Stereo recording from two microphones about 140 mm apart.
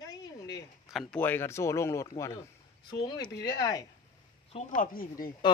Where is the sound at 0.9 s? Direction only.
Centre (ahead or behind).